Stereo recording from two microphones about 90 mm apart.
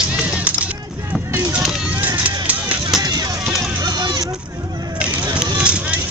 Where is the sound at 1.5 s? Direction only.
5° right (ahead or behind).